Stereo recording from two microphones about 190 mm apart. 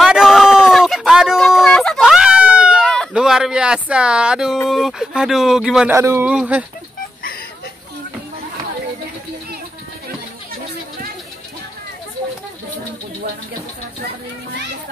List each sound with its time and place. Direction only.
0.0 s a sound: centre (ahead or behind)
4.6 s speech: centre (ahead or behind)
5.9 s a man's voice: 15° right (ahead or behind)